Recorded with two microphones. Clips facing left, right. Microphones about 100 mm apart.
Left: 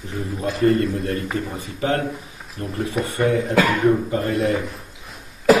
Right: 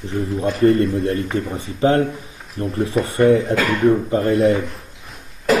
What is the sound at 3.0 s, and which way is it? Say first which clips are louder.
Speech: right 6 dB; centre (ahead or behind).